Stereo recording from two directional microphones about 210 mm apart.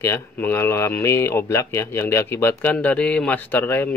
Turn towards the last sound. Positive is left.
turn(degrees=10)  # may be behind; listen again after turning